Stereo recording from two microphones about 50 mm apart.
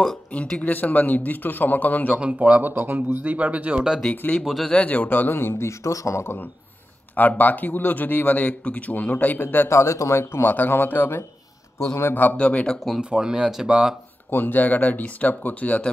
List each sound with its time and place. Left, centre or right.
0.6 s speech: left
2.1 s speech: right
2.7 s speech: right
3.7 s speech: centre
4.1 s speech: left
7.2 s speech: left
9.7 s speech: left
10.5 s speech: left
11.8 s speech: left
12.4 s speech: left
13.0 s speech: centre
14.3 s speech: left